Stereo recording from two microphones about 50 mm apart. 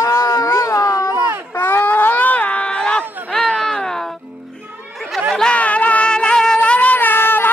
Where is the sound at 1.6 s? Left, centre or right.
Left; by 4.0 s centre.